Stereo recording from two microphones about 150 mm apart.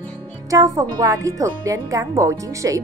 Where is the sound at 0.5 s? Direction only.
25° right (ahead or behind).